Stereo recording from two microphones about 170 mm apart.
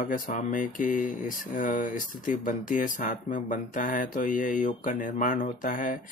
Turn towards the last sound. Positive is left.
turn(degrees=50)  # may be behind; listen again after turning